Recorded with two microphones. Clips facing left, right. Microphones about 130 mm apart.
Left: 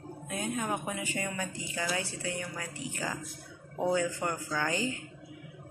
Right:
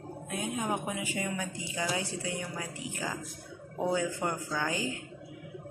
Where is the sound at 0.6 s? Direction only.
15° right (ahead or behind).